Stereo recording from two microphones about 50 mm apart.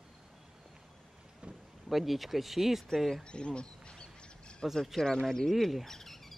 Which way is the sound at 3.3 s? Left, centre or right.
Centre.